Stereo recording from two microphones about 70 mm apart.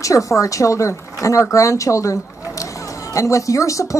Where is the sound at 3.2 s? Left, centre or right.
Left.